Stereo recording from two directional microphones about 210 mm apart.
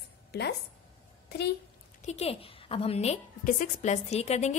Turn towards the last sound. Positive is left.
turn(degrees=30)  # may be behind; listen again after turning